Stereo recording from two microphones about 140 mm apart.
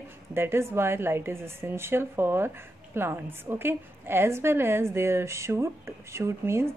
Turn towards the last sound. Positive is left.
turn(degrees=-20)  # may be behind; listen again after turning